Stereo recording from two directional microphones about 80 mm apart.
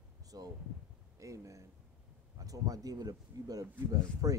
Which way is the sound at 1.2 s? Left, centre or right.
Right.